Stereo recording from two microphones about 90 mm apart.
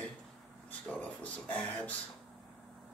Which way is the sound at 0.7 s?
15° left (ahead or behind).